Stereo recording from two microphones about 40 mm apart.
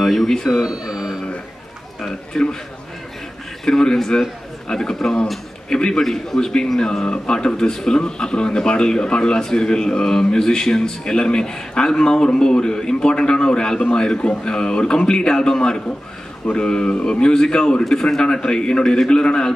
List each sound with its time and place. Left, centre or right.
0.0 s alarm clock: centre
0.7 s speech: centre
2.3 s a man's voice: centre
3.6 s a man's voice: centre